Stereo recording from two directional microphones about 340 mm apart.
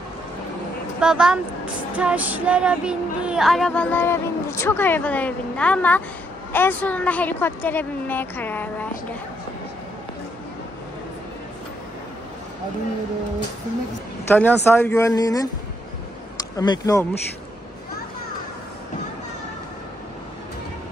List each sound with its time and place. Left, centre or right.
1.0 s speech: centre
14.2 s speech: centre
16.5 s speech: centre